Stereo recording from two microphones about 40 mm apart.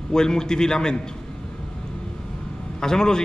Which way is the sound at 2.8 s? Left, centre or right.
Centre.